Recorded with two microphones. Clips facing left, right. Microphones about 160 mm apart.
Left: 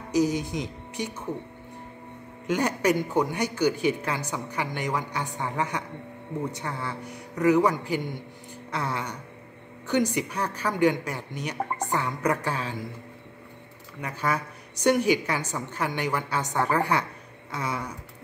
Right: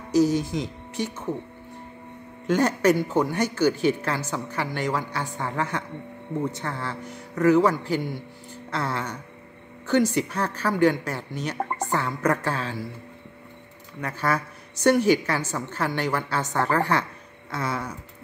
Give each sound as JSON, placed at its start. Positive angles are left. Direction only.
{"t": 0.1, "sound": "speech", "side_deg": 15}
{"t": 2.4, "sound": "a man's voice", "side_deg": 15}
{"t": 14.0, "sound": "a man's voice", "side_deg": 15}